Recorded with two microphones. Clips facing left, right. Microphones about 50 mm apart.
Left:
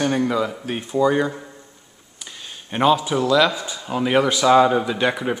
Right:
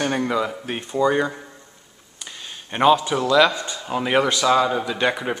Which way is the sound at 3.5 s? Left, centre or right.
Centre.